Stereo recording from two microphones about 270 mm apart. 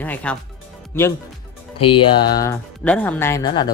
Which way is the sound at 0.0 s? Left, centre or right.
Centre.